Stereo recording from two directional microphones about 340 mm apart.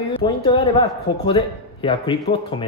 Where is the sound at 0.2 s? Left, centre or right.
Centre.